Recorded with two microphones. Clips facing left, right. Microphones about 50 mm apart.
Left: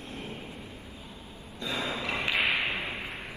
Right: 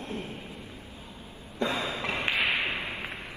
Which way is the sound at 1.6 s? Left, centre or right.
Right.